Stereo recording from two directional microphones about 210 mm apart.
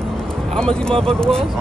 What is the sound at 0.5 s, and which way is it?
Speech, 5° left (ahead or behind).